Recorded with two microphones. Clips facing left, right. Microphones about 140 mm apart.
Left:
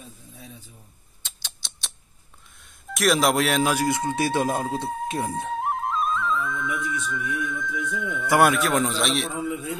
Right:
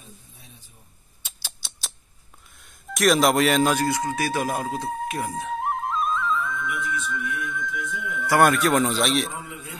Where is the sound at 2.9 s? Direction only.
Centre (ahead or behind).